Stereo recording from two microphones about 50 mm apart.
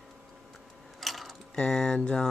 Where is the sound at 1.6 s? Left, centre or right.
Centre.